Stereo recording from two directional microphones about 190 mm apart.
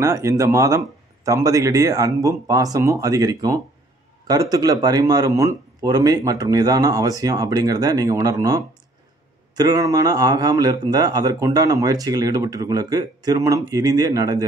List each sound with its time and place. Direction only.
0.0 s speech: 15° right (ahead or behind)